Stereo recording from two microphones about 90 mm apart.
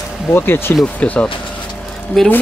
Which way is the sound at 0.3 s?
25° left (ahead or behind).